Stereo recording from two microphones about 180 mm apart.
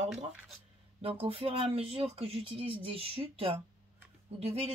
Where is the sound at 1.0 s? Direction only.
35° right (ahead or behind).